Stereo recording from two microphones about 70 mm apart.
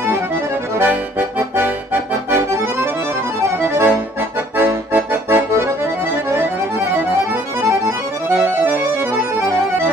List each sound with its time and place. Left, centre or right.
2.3 s accordion: right
8.3 s accordion: right